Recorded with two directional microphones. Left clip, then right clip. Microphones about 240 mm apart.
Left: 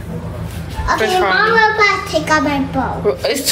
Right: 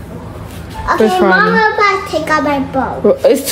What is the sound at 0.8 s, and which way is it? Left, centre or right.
A woman's voice, right.